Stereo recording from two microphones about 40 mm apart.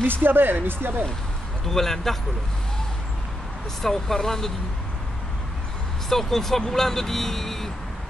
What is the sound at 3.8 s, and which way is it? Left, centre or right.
Speech, centre.